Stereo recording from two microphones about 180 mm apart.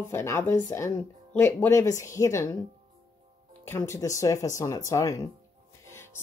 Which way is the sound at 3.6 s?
15° left (ahead or behind).